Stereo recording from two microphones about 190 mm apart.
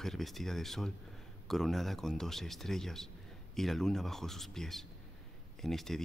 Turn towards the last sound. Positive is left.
turn(degrees=0)  # may be behind; listen again after turning